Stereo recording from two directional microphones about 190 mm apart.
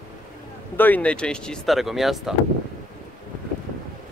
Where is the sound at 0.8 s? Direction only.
10° left (ahead or behind).